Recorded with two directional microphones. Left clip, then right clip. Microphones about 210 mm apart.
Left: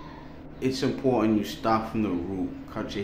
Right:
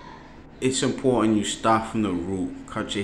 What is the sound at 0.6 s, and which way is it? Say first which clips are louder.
Speech: right 3 dB; 15° right (ahead or behind).